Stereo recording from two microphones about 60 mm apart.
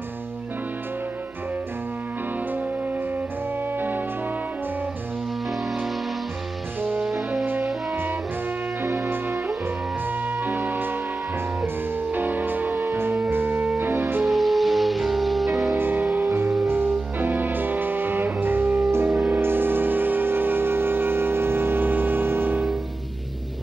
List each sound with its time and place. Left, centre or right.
7.0 s brass instrument: centre
8.8 s music: right
10.4 s music: right
14.2 s music: centre
15.7 s music: right
16.3 s music: right
16.6 s music: right
19.0 s music: right